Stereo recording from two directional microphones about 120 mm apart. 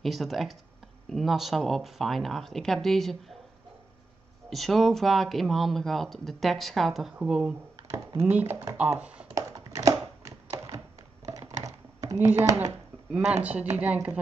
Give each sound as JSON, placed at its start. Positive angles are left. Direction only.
{"t": 0.0, "sound": "speech", "side_deg": 0}
{"t": 4.5, "sound": "speech", "side_deg": 0}
{"t": 7.7, "sound": "a sound", "side_deg": -30}
{"t": 8.3, "sound": "speech", "side_deg": -15}
{"t": 9.0, "sound": "computer keyboard", "side_deg": -10}
{"t": 9.3, "sound": "a sound", "side_deg": -25}
{"t": 11.6, "sound": "computer keyboard", "side_deg": -30}
{"t": 12.3, "sound": "speech", "side_deg": -20}
{"t": 13.1, "sound": "speech", "side_deg": -10}